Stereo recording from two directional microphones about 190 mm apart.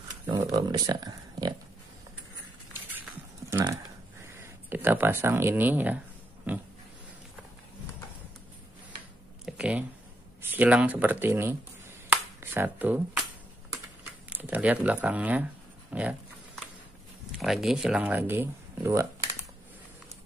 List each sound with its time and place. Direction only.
0.3 s speech: 20° right (ahead or behind)
3.5 s a sound: 20° right (ahead or behind)
4.4 s speech: 10° right (ahead or behind)
6.5 s pig: 10° right (ahead or behind)
9.5 s a sound: 5° right (ahead or behind)
10.4 s speech: 10° right (ahead or behind)
12.1 s finger snapping: 10° right (ahead or behind)
14.3 s speech: 10° right (ahead or behind)
15.9 s pig: 5° right (ahead or behind)
17.3 s speech: centre (ahead or behind)